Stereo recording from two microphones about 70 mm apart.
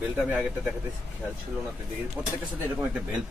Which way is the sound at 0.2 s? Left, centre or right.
Centre.